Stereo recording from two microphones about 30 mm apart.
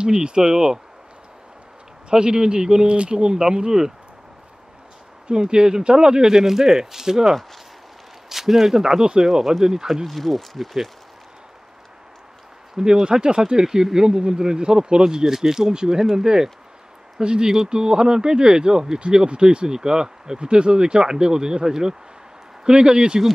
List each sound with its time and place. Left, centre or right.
0.0 s speech: right
0.4 s speech: centre
2.0 s speech: right
2.9 s speech: right
5.3 s speech: right; by 9.7 s centre
10.0 s speech: centre
12.7 s speech: right
17.2 s speech: right